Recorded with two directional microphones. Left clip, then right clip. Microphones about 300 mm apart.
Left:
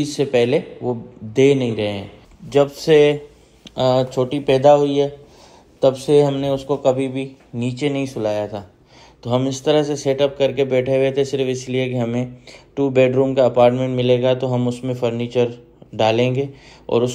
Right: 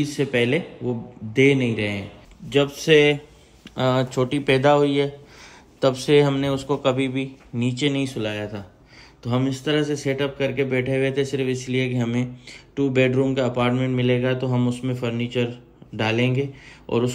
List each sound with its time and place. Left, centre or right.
0.0 s a man's voice: centre
1.7 s a man's voice: centre
2.8 s a man's voice: centre